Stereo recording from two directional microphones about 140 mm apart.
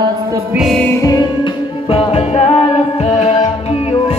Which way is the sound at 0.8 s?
20° left (ahead or behind).